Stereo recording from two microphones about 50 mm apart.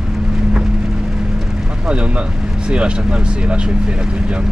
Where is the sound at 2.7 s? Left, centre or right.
Right.